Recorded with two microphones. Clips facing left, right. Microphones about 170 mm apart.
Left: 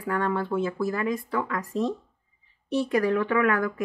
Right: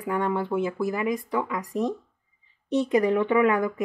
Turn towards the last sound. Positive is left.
turn(degrees=-20)  # may be behind; listen again after turning